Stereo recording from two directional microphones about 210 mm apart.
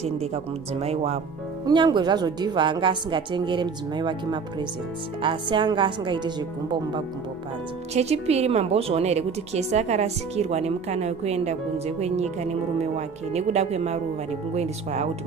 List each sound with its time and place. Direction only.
0.0 s a woman's voice: 30° right (ahead or behind)